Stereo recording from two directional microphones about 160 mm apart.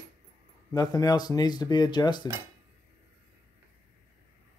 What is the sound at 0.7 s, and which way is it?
Speech, 25° left (ahead or behind).